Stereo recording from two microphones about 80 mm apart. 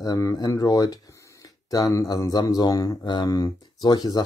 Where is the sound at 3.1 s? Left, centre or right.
Left.